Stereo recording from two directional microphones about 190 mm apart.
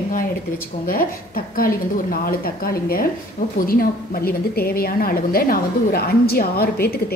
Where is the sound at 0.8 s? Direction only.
50° left (ahead or behind).